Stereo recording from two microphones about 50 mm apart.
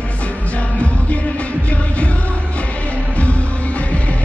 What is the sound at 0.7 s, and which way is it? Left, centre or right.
Music, left.